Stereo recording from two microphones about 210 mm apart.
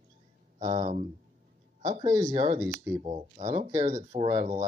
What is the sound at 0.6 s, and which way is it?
Speech, 35° right (ahead or behind).